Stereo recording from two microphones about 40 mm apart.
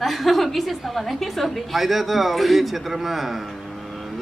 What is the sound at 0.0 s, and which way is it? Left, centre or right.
A woman's voice, centre.